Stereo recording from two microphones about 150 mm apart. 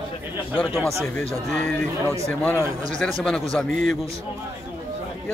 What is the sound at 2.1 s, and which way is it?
Speech, 15° left (ahead or behind).